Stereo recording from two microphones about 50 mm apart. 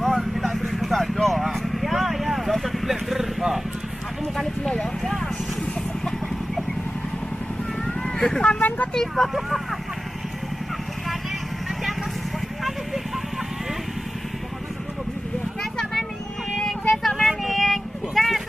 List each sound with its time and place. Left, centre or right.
0.0 s vehicle: centre
7.8 s vehicle: centre
8.5 s speech: left
8.9 s speech: centre
15.8 s vehicle: centre
16.9 s a sound: centre